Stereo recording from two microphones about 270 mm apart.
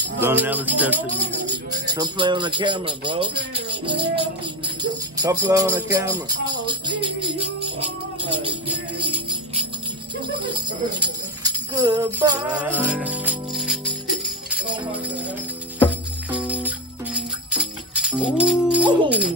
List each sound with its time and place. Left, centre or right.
0.2 s music: centre
11.0 s music: centre
18.4 s speech: centre